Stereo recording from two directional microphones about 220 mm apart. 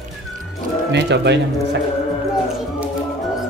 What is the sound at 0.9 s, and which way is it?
Speech, 50° right (ahead or behind).